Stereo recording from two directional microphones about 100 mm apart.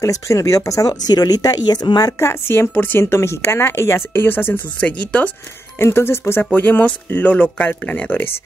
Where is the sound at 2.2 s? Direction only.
25° left (ahead or behind).